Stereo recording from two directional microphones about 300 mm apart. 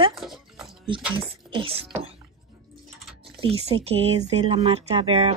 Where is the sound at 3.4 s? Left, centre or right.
Centre.